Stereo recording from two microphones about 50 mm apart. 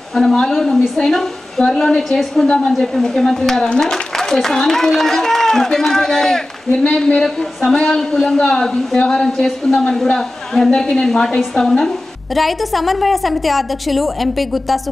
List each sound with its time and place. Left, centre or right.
0.1 s a man's voice: centre
2.4 s a woman's voice: centre
12.4 s a woman's voice: centre